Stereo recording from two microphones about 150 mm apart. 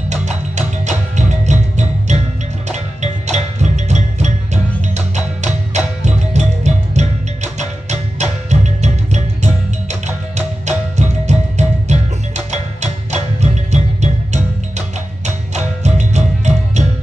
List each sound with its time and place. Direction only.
0.1 s music: 50° right (ahead or behind)